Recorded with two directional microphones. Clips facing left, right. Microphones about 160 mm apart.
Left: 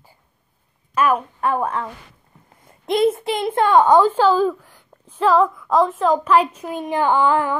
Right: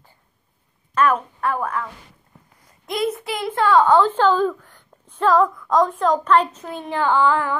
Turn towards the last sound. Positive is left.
turn(degrees=15)  # may be behind; listen again after turning